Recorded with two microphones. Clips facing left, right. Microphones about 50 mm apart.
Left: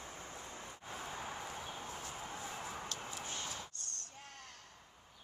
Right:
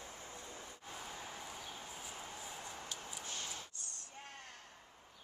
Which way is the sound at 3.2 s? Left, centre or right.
Left.